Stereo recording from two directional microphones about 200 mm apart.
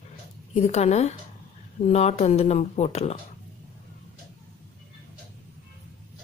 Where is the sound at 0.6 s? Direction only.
35° left (ahead or behind).